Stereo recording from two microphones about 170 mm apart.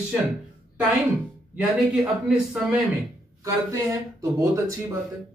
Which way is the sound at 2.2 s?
5° right (ahead or behind).